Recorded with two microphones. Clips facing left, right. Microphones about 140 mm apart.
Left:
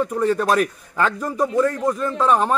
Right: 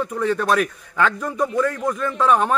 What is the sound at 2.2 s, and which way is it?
Speech, centre (ahead or behind).